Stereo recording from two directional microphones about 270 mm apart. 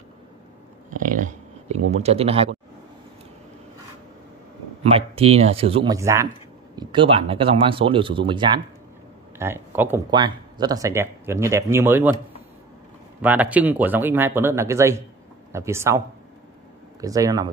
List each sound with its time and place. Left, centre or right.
0.8 s a sound: right
1.9 s speech: right
4.8 s speech: right
13.2 s speech: centre
17.0 s speech: centre